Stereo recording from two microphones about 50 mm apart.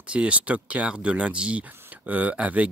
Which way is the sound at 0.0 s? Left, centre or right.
Right.